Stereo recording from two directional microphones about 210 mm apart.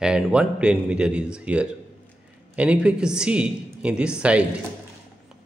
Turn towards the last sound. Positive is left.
turn(degrees=-5)  # may be behind; listen again after turning